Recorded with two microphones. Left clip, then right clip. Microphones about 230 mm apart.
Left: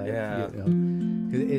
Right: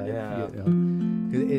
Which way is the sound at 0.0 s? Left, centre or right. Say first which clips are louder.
Left 1 dB; centre.